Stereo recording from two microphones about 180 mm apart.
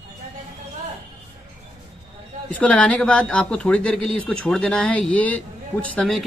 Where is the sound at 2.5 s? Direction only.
10° left (ahead or behind).